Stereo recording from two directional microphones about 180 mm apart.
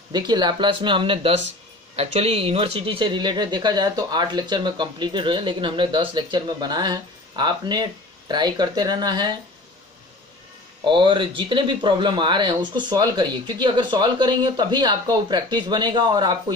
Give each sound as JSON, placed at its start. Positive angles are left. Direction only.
{"t": 0.1, "sound": "speech", "side_deg": -25}
{"t": 10.8, "sound": "speech", "side_deg": -25}